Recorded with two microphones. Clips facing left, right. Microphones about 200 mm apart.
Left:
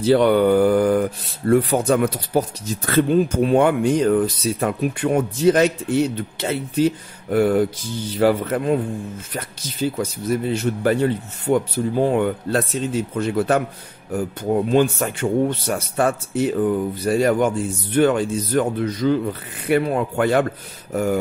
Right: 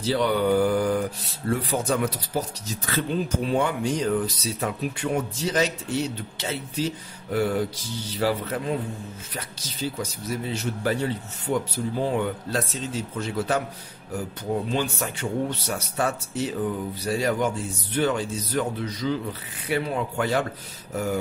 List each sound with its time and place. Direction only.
0.0 s speech: 55° left (ahead or behind)